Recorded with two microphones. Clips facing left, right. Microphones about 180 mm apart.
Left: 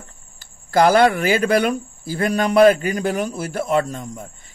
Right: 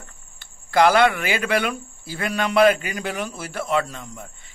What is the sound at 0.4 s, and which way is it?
Speech, 40° left (ahead or behind).